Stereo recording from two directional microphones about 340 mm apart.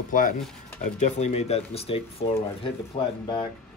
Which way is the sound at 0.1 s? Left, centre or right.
Left.